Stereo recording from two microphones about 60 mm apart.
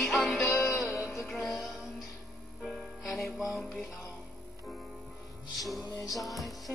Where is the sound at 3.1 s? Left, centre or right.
Centre.